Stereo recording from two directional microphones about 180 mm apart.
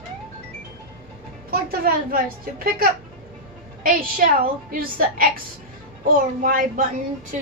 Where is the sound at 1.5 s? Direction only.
55° right (ahead or behind).